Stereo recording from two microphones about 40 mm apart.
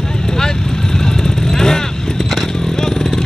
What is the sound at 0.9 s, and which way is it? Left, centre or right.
Vehicle, centre.